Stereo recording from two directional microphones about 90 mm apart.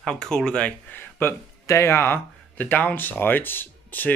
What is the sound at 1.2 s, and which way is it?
Speech, 25° left (ahead or behind).